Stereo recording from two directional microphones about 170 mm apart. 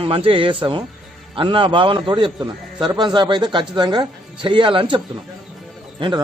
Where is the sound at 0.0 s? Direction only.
30° right (ahead or behind).